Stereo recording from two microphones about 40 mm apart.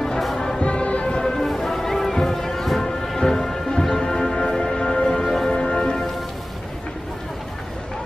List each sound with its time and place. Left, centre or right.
0.6 s music: left
1.1 s music: centre